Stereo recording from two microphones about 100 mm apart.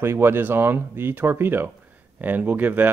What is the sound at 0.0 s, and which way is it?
Speech, 25° right (ahead or behind).